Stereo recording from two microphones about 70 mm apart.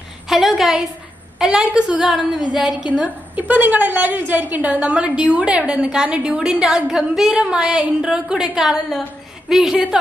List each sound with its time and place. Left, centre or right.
0.3 s a woman's voice: centre
3.0 s a woman's voice: right; by 9.8 s centre